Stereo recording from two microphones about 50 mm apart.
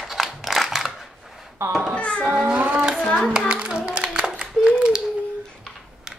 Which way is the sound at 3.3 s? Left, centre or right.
Centre.